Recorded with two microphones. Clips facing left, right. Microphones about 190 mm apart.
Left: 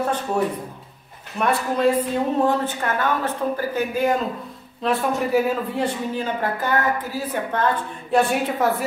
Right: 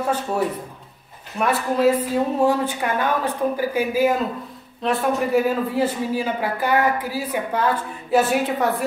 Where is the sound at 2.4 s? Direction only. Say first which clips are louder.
Right 1 dB; 15° right (ahead or behind).